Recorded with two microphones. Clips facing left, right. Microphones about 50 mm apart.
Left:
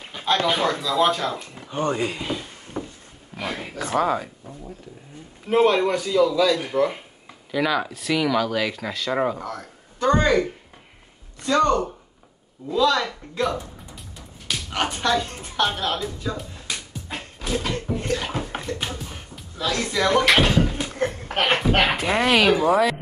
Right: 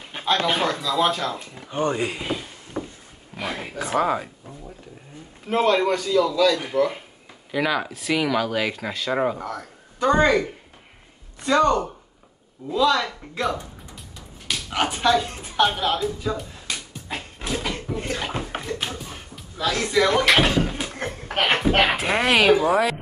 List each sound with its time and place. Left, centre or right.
0.2 s a sound: centre
0.7 s speech: centre
1.7 s speech: centre
2.0 s a sound: centre
3.6 s speech: centre
5.5 s a man's voice: centre
7.5 s speech: centre
11.4 s speech: centre
14.7 s a woman's voice: centre
17.9 s bathtub: centre
18.2 s music: centre